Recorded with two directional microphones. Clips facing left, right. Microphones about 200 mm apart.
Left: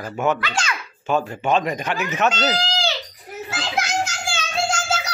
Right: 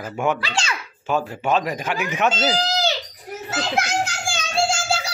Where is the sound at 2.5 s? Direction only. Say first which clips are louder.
Right 2 dB; 40° right (ahead or behind).